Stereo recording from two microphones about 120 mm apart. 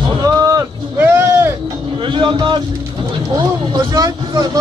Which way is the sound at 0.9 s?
20° right (ahead or behind).